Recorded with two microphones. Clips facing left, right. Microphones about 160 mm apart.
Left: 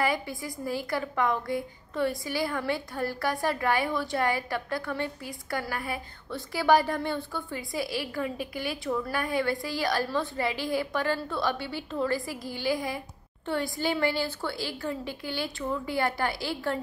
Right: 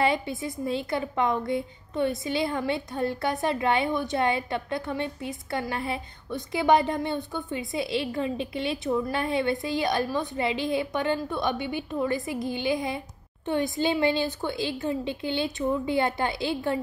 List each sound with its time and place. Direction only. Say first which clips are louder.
0.0 s a woman's voice: right 3 dB; 25° right (ahead or behind)